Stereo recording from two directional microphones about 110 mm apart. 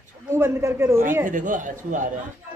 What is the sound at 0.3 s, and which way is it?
A woman's voice, 25° right (ahead or behind).